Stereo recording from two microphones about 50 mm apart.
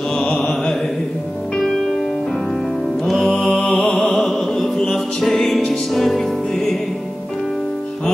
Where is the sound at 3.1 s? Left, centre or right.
Centre.